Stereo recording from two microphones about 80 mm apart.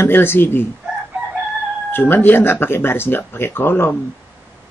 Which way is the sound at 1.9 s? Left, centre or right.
Left.